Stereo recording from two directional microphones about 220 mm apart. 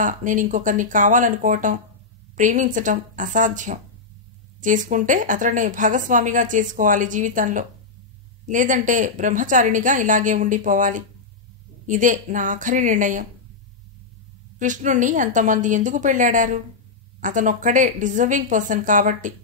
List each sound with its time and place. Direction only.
0.0 s a woman's voice: 35° right (ahead or behind)
14.6 s a woman's voice: 35° right (ahead or behind)